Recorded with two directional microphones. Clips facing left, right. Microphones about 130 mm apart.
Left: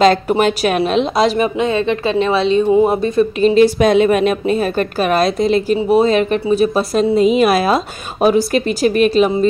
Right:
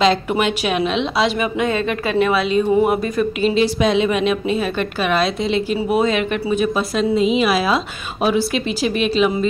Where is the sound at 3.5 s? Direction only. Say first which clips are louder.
Left 7 dB; 50° left (ahead or behind).